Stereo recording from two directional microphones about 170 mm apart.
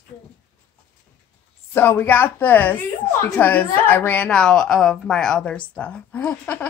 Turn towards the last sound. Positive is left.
turn(degrees=10)  # may be behind; listen again after turning